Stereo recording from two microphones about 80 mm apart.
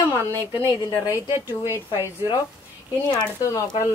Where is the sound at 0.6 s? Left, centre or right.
Left.